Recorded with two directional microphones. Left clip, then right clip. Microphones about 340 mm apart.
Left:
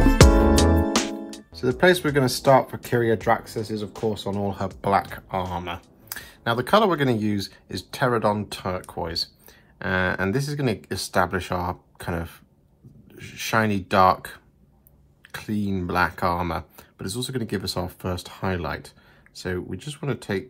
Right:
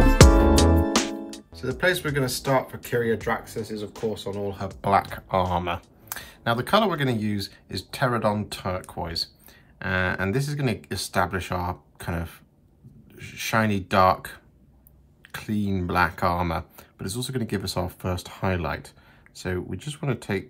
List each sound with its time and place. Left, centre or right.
0.0 s music: centre
3.3 s speech: centre
4.5 s speech: centre